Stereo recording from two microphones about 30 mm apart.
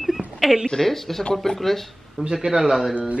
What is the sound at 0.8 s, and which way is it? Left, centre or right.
Speech, centre.